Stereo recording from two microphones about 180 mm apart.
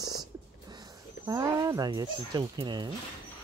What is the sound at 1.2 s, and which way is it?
Speech, 15° right (ahead or behind).